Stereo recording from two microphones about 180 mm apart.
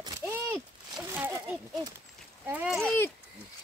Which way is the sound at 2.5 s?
5° right (ahead or behind).